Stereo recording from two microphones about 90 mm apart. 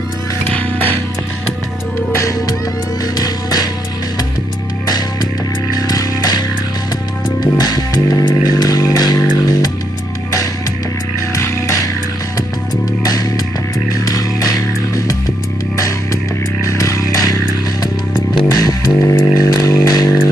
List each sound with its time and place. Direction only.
0.5 s music: 20° left (ahead or behind)
2.0 s music: 35° left (ahead or behind)
3.2 s music: 45° left (ahead or behind)
4.8 s music: 50° left (ahead or behind)
11.3 s music: 35° left (ahead or behind)
13.0 s music: 45° left (ahead or behind)
16.6 s a sound: 40° left (ahead or behind)
18.5 s music: 45° left (ahead or behind)
18.9 s a sound: 35° left (ahead or behind)